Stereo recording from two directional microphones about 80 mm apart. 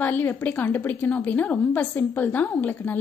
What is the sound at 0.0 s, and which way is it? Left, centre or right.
A woman's voice, left.